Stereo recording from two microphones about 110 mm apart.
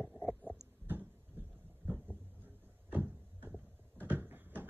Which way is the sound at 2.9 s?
15° right (ahead or behind).